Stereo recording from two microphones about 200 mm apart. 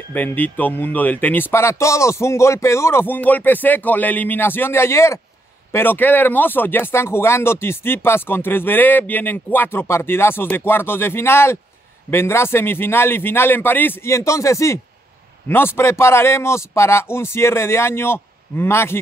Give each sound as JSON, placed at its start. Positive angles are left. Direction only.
{"t": 0.1, "sound": "speech", "side_deg": 10}